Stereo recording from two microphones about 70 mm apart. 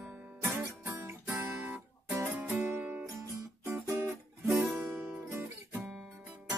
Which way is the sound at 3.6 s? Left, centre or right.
Right.